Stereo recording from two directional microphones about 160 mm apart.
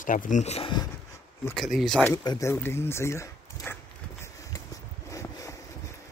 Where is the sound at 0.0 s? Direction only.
55° left (ahead or behind); by 0.8 s 35° left (ahead or behind).